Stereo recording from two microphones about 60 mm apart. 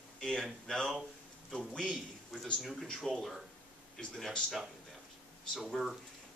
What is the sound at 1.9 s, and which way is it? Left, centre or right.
A man's voice, centre.